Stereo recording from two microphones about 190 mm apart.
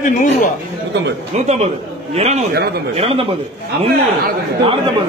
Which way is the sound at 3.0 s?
30° right (ahead or behind).